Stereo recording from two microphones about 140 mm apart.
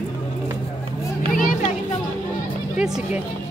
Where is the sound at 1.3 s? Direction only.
80° left.